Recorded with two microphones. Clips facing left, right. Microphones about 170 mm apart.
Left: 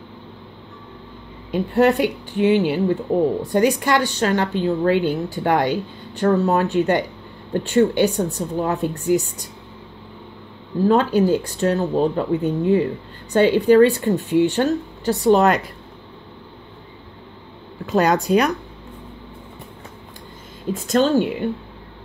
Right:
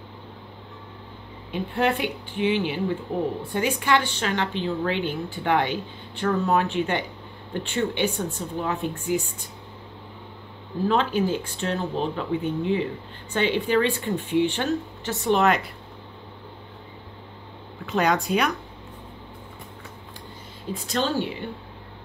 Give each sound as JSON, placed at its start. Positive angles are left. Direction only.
{"t": 1.5, "sound": "a woman's voice", "side_deg": 40}
{"t": 10.9, "sound": "a woman's voice", "side_deg": 40}
{"t": 17.8, "sound": "a woman's voice", "side_deg": 35}
{"t": 20.7, "sound": "speech", "side_deg": 45}